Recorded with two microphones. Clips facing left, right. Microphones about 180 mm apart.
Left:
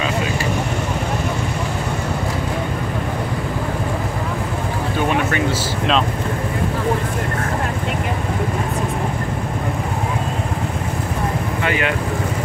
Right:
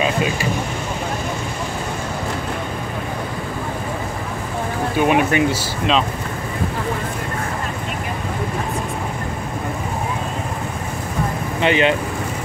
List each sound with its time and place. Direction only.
5.1 s speech: 15° right (ahead or behind)
11.6 s speech: 20° right (ahead or behind)